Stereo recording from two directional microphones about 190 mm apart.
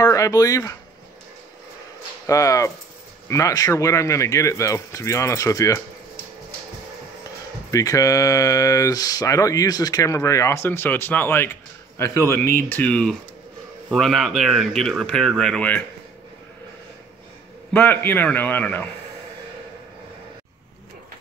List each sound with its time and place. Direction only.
0.0 s speech: 15° left (ahead or behind)
2.2 s speech: 15° left (ahead or behind)
7.7 s speech: 20° left (ahead or behind)
17.7 s speech: 10° left (ahead or behind)